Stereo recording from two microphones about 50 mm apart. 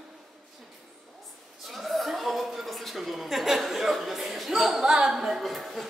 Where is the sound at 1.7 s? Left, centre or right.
Centre.